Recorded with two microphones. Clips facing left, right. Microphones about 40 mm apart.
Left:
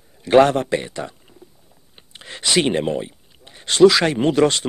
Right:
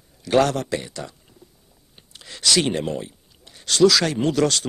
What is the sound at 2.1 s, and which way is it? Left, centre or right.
Speech, left.